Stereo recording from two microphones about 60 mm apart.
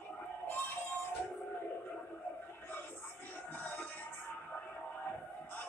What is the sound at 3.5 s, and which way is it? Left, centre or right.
Music, left.